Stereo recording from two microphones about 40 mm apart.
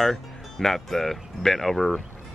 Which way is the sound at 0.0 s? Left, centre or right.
Centre.